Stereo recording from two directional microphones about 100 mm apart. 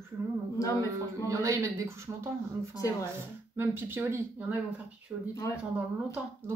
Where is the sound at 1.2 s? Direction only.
30° right (ahead or behind).